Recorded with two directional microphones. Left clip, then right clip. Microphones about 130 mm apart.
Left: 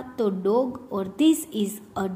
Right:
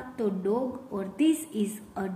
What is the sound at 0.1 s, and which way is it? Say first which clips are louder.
A woman's voice: left 6 dB; 35° left (ahead or behind).